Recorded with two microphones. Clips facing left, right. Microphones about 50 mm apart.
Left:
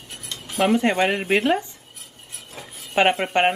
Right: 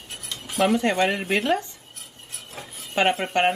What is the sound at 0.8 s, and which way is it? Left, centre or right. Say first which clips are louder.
Speech: left 2 dB; centre.